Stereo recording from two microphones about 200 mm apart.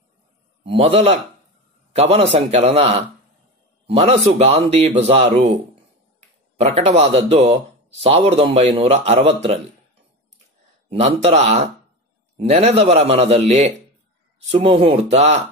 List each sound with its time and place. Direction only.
0.7 s a man's voice: 30° right (ahead or behind)
6.6 s a man's voice: 30° right (ahead or behind)
10.9 s a man's voice: 30° right (ahead or behind)
14.5 s a man's voice: 30° right (ahead or behind)